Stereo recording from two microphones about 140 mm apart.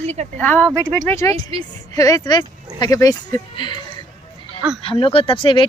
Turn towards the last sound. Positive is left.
turn(degrees=40)  # may be behind; listen again after turning